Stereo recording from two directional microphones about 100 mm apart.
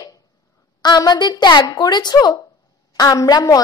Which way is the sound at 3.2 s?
35° left (ahead or behind).